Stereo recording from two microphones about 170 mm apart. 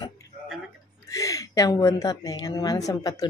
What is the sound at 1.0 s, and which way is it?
Speech, 20° left (ahead or behind).